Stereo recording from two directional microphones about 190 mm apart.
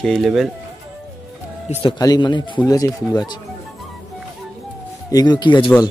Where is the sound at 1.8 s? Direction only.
20° left (ahead or behind).